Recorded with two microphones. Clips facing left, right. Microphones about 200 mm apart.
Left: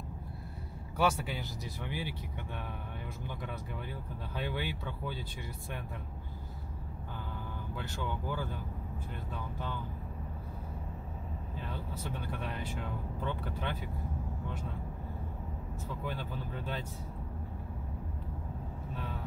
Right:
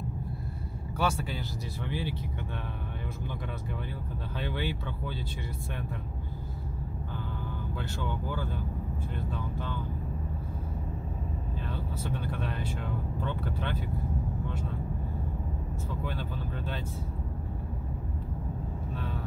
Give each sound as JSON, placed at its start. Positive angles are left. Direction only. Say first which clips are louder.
{"t": 0.9, "sound": "speech", "louder": "even", "side_deg": 15}
{"t": 4.4, "sound": "speech", "louder": "right 3 dB", "side_deg": 10}
{"t": 12.0, "sound": "speech", "louder": "right 5 dB", "side_deg": 15}
{"t": 16.1, "sound": "speech", "louder": "right 3 dB", "side_deg": 10}